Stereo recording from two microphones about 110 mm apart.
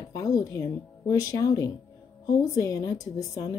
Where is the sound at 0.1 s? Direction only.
30° left (ahead or behind).